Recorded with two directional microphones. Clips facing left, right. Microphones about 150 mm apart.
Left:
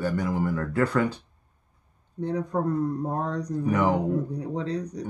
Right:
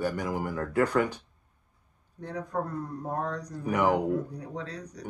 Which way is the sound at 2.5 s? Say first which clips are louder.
Left 6 dB; 20° left (ahead or behind).